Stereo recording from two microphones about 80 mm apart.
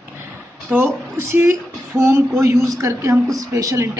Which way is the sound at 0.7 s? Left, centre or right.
Right.